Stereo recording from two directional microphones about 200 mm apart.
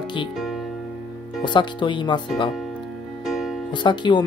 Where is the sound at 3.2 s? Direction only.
Centre (ahead or behind).